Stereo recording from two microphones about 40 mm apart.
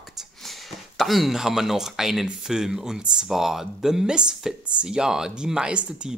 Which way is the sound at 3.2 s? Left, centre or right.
Centre.